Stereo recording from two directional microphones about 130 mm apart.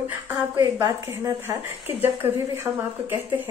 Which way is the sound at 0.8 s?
25° right (ahead or behind).